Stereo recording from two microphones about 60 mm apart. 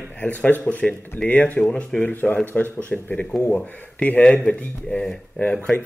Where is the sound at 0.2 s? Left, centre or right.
Left.